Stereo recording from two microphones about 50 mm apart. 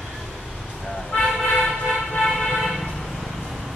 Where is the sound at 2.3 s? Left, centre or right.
Centre.